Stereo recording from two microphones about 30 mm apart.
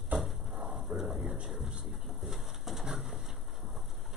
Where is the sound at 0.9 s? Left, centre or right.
Centre.